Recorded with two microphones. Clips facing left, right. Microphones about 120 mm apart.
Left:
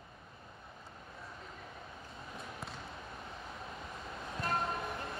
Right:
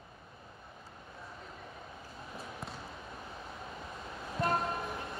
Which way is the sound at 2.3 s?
Centre (ahead or behind).